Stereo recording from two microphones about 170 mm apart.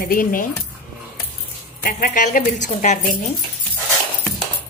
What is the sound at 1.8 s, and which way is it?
Speech, 55° left (ahead or behind).